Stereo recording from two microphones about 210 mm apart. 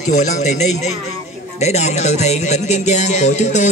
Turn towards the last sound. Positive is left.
turn(degrees=35)  # may be behind; listen again after turning